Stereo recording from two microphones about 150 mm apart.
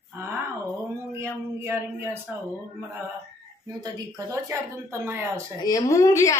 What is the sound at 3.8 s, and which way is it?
Speech, 20° right (ahead or behind).